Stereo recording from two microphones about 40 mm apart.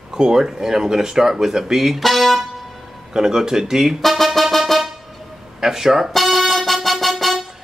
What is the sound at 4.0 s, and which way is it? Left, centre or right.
Music, centre.